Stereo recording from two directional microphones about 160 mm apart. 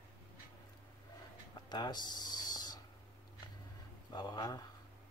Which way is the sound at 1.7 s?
25° left (ahead or behind).